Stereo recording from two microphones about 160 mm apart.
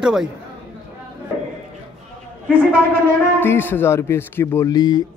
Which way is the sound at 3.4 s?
15° left (ahead or behind).